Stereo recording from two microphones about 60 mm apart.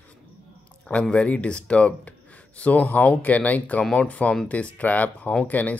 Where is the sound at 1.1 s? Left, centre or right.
Left.